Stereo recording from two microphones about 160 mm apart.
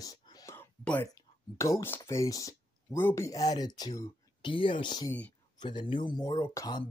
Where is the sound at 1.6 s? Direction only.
15° left (ahead or behind).